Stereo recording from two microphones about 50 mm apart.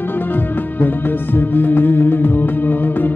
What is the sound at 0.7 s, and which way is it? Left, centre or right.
Music, left.